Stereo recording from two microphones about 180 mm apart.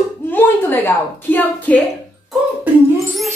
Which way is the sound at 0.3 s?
10° left (ahead or behind).